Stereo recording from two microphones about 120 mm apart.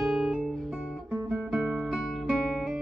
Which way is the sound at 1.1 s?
20° right (ahead or behind).